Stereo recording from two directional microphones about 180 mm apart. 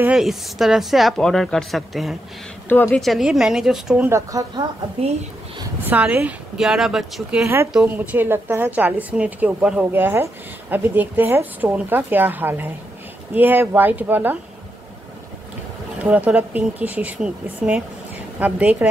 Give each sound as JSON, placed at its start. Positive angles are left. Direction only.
{"t": 0.0, "sound": "speech", "side_deg": -5}
{"t": 4.1, "sound": "a woman's voice", "side_deg": -20}
{"t": 5.9, "sound": "speech", "side_deg": -10}
{"t": 7.4, "sound": "a woman's voice", "side_deg": -15}
{"t": 16.0, "sound": "a woman's voice", "side_deg": -10}